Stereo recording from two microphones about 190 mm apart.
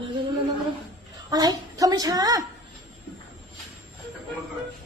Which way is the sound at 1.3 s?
20° right (ahead or behind).